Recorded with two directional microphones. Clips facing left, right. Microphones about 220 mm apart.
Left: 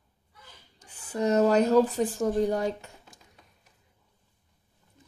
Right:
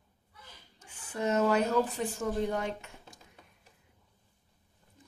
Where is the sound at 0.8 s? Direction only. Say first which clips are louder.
Left 5 dB; 35° left (ahead or behind).